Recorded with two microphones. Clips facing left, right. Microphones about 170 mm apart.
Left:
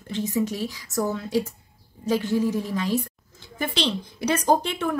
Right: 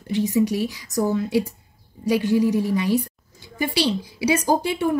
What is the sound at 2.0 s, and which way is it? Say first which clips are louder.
A woman's voice: right 4 dB; 15° right (ahead or behind).